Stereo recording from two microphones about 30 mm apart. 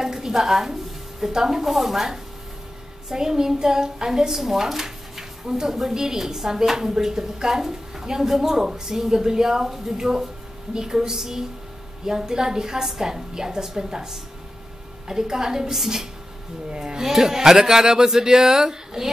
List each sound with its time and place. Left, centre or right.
0.0 s a sound: centre
1.3 s a woman's voice: centre
3.1 s a child's voice: centre
16.7 s a woman's voice: right
17.0 s a woman's voice: centre